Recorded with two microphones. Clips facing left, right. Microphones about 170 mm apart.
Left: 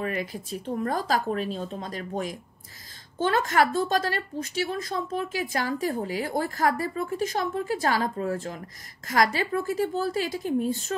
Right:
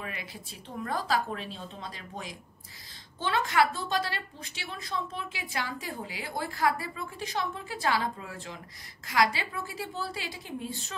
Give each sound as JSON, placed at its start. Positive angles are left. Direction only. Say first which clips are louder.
{"t": 0.0, "sound": "a woman's voice", "louder": "left 10 dB", "side_deg": 45}